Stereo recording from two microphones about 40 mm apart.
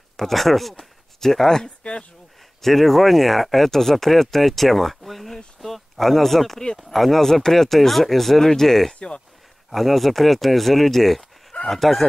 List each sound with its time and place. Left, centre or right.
0.2 s speech: centre
1.8 s speech: left
2.6 s speech: centre